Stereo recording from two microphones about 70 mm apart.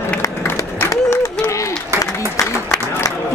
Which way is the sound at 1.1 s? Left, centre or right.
Left.